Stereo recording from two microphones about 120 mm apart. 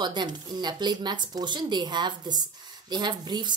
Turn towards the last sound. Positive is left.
turn(degrees=-40)  # may be behind; listen again after turning